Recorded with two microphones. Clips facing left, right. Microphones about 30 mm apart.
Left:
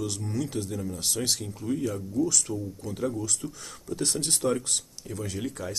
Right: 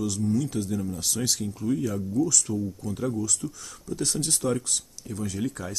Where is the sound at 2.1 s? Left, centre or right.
Centre.